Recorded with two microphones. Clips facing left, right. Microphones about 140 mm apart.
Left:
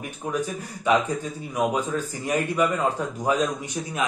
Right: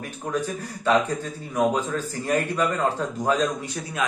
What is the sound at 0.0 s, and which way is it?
Speech, 15° left (ahead or behind).